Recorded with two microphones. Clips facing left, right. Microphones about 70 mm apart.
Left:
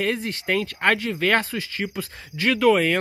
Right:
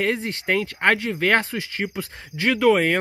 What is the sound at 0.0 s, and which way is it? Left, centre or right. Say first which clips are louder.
Speech: right 1 dB; right.